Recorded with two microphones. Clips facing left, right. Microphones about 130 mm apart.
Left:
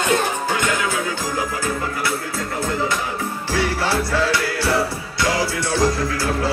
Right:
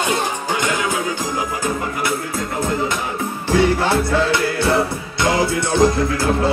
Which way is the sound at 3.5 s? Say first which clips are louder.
Right 5 dB; 20° right (ahead or behind).